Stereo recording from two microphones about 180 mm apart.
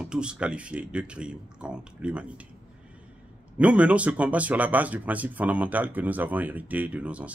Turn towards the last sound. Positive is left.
turn(degrees=-5)  # may be behind; listen again after turning